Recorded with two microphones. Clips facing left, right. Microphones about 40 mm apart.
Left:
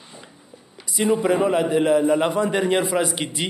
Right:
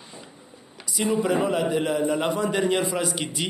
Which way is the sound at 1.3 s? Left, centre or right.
Left.